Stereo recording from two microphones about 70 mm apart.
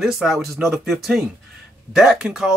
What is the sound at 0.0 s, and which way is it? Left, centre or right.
Speech, centre.